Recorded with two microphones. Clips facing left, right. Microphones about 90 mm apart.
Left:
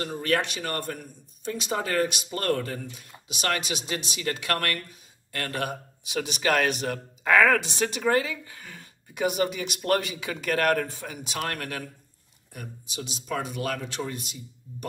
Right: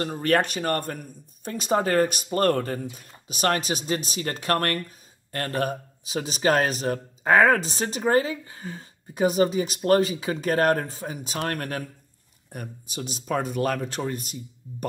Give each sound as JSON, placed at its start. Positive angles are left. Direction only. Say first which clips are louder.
{"t": 0.0, "sound": "speech", "louder": "right 4 dB", "side_deg": -45}